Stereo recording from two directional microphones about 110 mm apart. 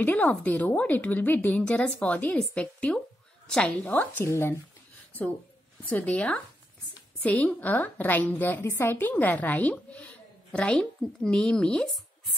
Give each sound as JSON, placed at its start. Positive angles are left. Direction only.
{"t": 0.0, "sound": "a woman's voice", "side_deg": 15}
{"t": 5.8, "sound": "a woman's voice", "side_deg": 15}